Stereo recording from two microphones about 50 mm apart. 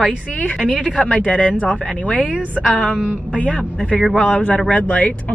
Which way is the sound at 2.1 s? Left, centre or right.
Right.